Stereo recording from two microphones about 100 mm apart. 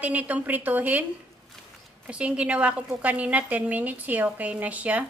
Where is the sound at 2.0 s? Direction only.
10° right (ahead or behind).